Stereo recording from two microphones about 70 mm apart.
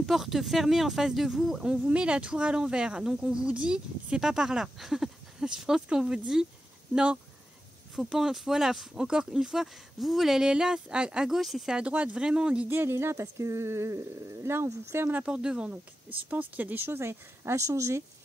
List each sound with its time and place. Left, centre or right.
0.0 s speech: centre
7.9 s speech: centre
11.7 s speech: centre
12.6 s speech: right
15.2 s speech: centre; by 18.0 s right